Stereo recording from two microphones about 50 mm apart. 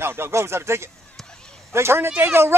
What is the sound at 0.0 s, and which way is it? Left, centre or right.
Speech, right.